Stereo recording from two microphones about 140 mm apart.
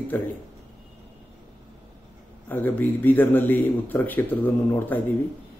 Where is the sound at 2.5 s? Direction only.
15° left (ahead or behind).